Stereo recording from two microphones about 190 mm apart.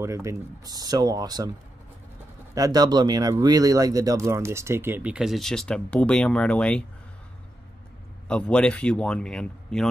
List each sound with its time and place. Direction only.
0.0 s speech: 15° right (ahead or behind)
2.5 s speech: 20° right (ahead or behind); by 6.8 s 5° left (ahead or behind)
8.3 s speech: 5° left (ahead or behind)